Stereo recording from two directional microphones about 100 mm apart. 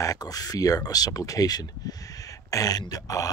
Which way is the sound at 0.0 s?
35° left (ahead or behind).